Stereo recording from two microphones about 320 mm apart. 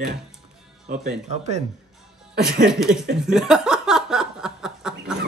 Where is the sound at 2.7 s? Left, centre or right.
Centre.